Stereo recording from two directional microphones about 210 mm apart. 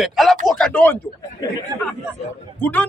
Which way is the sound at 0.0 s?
Centre (ahead or behind).